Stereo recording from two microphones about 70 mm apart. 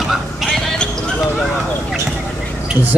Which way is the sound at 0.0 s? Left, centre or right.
Centre.